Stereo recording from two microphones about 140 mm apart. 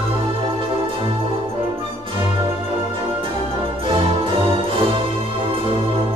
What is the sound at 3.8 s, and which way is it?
Music, 40° right (ahead or behind).